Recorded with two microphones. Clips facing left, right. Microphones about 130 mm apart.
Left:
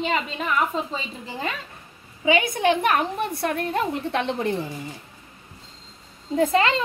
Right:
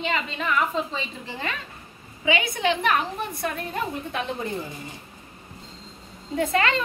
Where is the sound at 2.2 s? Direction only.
45° left (ahead or behind); by 4.5 s 65° left (ahead or behind).